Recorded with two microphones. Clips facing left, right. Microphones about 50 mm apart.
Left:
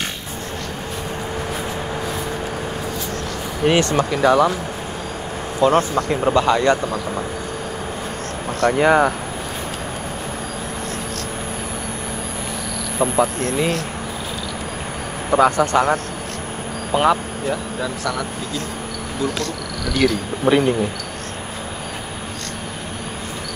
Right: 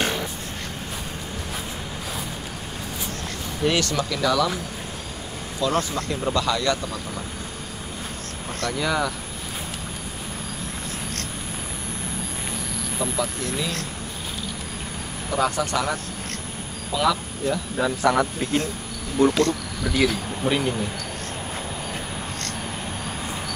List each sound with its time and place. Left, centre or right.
3.6 s speech: left
5.6 s speech: left
8.5 s speech: left
13.0 s speech: left
15.3 s speech: left
18.0 s speech: right
19.2 s speech: right
20.0 s speech: left
20.4 s speech: centre